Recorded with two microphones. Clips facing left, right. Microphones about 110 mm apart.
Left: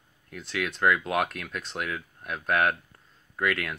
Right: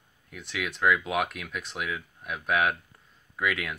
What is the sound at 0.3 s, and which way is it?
Speech, 5° right (ahead or behind).